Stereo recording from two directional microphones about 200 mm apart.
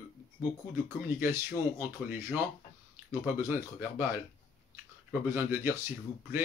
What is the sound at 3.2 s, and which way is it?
Speech, 10° right (ahead or behind).